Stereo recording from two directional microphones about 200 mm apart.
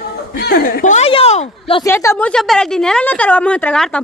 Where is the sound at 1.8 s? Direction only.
15° left (ahead or behind).